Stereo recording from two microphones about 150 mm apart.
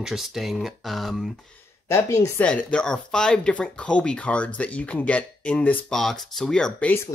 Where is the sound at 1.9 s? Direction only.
20° left (ahead or behind).